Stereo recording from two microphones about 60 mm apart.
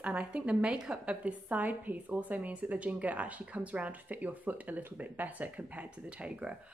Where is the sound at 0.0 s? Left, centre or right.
Right.